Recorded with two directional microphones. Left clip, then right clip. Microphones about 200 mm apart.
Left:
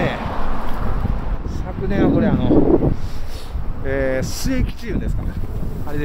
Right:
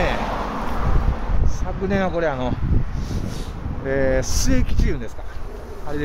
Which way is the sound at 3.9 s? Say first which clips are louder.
Even; 5° left (ahead or behind).